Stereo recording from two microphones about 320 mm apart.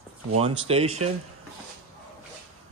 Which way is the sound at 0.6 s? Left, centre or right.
Centre.